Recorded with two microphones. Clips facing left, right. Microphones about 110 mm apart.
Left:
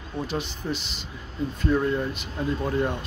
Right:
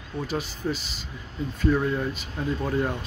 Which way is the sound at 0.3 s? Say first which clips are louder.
Right 3 dB; 5° right (ahead or behind).